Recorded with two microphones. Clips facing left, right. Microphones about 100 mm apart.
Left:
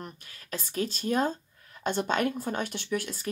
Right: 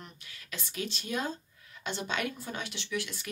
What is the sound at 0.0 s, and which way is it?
Speech, 40° left (ahead or behind).